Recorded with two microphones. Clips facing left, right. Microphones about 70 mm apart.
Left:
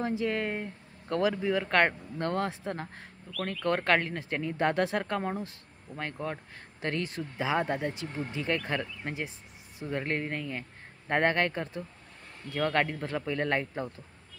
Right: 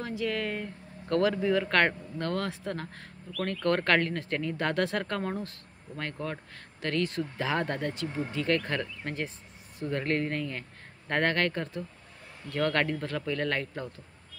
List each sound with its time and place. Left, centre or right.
0.0 s speech: left